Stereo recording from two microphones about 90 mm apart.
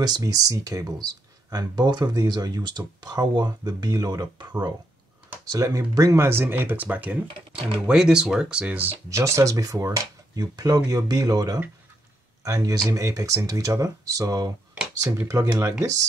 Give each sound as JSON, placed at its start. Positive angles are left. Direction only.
{"t": 0.0, "sound": "speech", "side_deg": -45}
{"t": 5.4, "sound": "speech", "side_deg": -45}
{"t": 9.1, "sound": "speech", "side_deg": -35}